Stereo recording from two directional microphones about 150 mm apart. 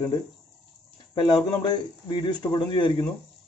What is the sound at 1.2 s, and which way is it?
A man's voice, 30° left (ahead or behind).